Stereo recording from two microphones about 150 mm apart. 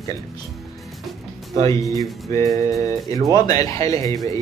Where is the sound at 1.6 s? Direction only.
20° left (ahead or behind).